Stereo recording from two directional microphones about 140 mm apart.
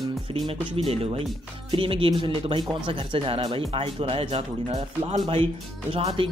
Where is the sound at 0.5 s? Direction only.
45° right (ahead or behind).